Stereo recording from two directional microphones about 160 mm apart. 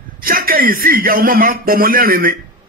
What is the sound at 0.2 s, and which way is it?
A man's voice, 65° right (ahead or behind).